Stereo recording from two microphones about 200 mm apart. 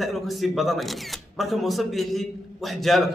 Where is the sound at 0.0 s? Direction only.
Centre (ahead or behind).